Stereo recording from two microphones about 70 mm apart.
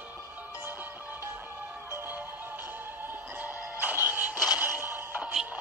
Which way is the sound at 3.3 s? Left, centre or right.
Right.